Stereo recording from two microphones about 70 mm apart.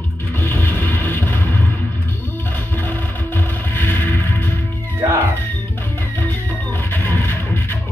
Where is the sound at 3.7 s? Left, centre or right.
Left.